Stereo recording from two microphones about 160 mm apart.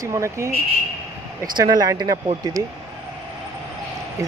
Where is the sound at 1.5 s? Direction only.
25° right (ahead or behind).